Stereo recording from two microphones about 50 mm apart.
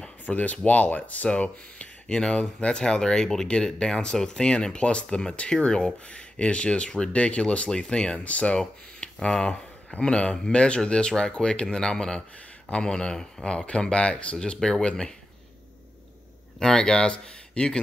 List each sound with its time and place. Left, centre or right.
0.2 s speech: left
16.5 s speech: centre